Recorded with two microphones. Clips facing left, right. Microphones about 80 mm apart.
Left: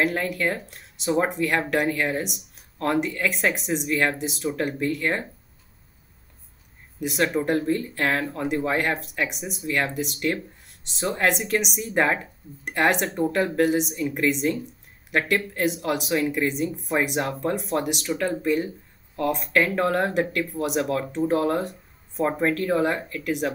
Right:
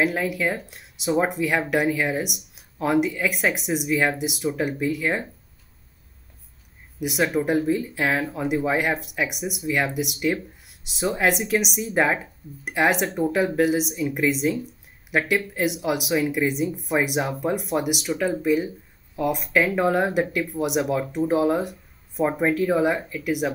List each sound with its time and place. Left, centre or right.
0.0 s speech: centre
7.0 s speech: centre